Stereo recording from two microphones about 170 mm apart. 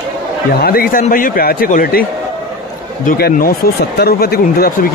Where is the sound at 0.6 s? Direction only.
60° left (ahead or behind).